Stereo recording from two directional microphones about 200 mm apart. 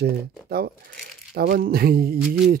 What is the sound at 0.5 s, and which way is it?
Speech, 50° right (ahead or behind).